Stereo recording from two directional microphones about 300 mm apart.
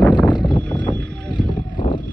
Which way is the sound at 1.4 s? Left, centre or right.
Centre.